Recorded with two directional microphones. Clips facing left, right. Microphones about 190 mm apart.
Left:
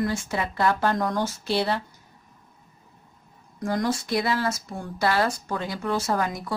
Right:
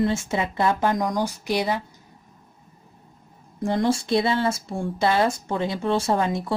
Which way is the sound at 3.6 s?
25° right (ahead or behind).